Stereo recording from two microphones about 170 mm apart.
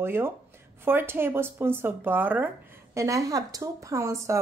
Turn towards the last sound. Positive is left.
turn(degrees=-20)  # may be behind; listen again after turning